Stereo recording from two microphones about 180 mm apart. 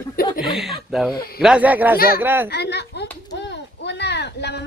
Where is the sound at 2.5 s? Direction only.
70° left (ahead or behind).